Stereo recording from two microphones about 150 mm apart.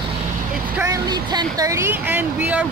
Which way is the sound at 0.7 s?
20° right (ahead or behind).